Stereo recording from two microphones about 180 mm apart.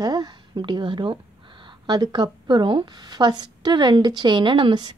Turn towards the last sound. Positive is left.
turn(degrees=-25)  # may be behind; listen again after turning